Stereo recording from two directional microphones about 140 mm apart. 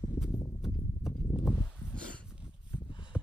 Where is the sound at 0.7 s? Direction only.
25° left (ahead or behind).